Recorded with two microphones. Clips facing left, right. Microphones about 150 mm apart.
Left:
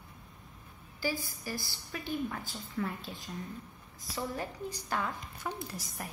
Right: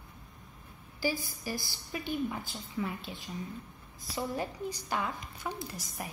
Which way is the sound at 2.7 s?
5° right (ahead or behind).